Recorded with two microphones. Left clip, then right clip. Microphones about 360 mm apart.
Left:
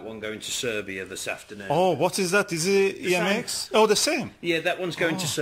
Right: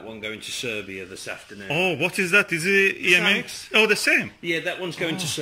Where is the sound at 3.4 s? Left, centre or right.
Centre.